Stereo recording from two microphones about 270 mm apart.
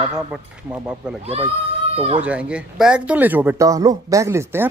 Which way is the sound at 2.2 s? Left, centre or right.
Centre.